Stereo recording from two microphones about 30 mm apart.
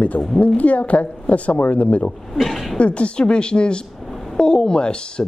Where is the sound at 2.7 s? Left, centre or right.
Left.